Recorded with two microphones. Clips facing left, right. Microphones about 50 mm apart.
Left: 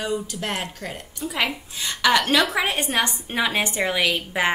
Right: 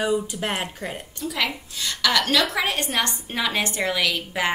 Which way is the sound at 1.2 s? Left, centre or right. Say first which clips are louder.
Left 1 dB; left.